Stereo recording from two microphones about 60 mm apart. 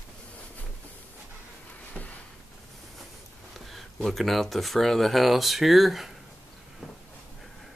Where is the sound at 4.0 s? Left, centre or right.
Centre.